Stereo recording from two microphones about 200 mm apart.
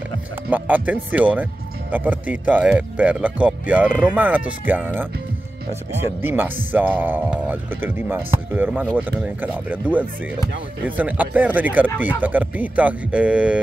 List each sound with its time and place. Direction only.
0.5 s speech: 10° right (ahead or behind)
6.2 s speech: 10° right (ahead or behind)